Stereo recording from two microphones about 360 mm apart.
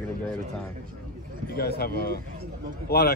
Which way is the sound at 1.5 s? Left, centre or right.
Left.